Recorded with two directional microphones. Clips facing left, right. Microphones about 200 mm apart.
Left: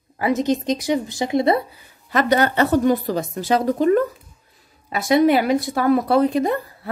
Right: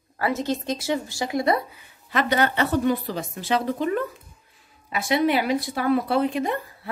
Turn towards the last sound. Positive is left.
turn(degrees=40)  # may be behind; listen again after turning